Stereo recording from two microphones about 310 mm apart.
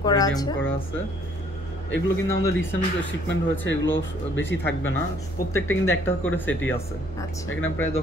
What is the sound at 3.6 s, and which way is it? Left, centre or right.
Speech, left.